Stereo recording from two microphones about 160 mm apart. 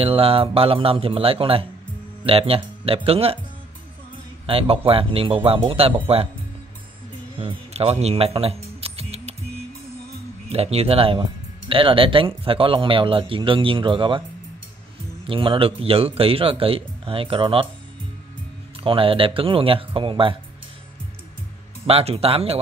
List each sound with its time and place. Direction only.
0.0 s speech: 35° right (ahead or behind)
4.5 s speech: 35° right (ahead or behind)
7.3 s music: 35° right (ahead or behind)
10.5 s speech: 40° right (ahead or behind)
15.2 s speech: 35° right (ahead or behind)
18.8 s speech: 35° right (ahead or behind)
21.8 s speech: 40° right (ahead or behind)